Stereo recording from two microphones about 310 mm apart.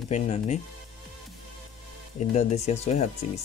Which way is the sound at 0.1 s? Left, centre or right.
Left.